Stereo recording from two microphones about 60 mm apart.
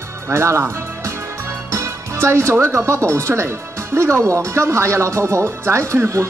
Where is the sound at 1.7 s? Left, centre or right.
Right.